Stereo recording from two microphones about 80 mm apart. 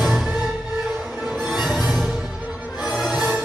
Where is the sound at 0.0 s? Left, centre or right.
Centre.